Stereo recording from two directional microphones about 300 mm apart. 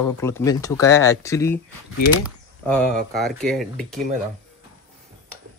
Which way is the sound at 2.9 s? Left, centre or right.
Right.